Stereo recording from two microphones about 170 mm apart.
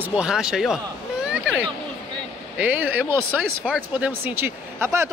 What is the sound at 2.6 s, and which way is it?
Speech, 10° right (ahead or behind).